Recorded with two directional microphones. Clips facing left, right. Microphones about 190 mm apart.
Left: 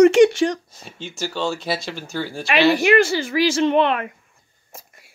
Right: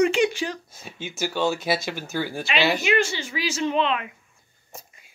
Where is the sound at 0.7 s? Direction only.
5° right (ahead or behind).